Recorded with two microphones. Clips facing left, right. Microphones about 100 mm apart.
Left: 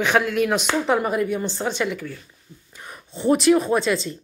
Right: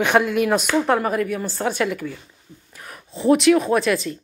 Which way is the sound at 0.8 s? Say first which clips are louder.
Right 1 dB; 5° left (ahead or behind).